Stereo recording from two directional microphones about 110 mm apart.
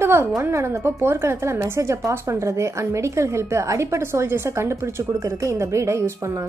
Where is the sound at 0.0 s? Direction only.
20° right (ahead or behind).